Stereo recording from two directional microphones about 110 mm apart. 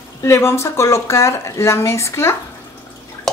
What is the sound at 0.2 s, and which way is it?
Speech, 25° left (ahead or behind).